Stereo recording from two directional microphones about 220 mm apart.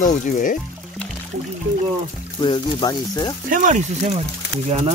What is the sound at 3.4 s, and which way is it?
Speech, 35° right (ahead or behind).